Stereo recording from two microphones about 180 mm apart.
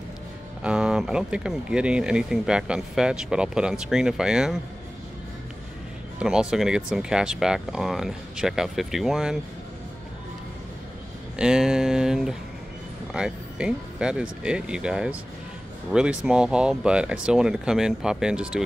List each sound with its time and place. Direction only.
0.7 s speech: 5° right (ahead or behind)
6.1 s music: 5° right (ahead or behind)
6.5 s speech: 5° right (ahead or behind)
11.3 s speech: 5° right (ahead or behind)